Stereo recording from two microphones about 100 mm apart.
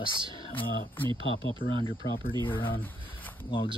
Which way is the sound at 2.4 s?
55° left (ahead or behind).